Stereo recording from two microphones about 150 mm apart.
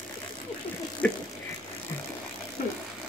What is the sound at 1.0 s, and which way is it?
Vehicle, 10° left (ahead or behind).